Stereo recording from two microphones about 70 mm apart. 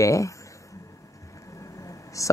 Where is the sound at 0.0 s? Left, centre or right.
Left.